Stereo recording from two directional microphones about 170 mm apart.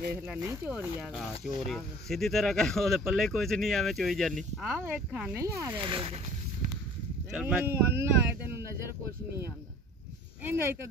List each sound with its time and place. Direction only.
0.3 s speech: 10° right (ahead or behind)
5.4 s speech: 15° right (ahead or behind)
5.9 s speech: 35° right (ahead or behind)
7.2 s speech: 5° right (ahead or behind)
10.4 s speech: 15° right (ahead or behind)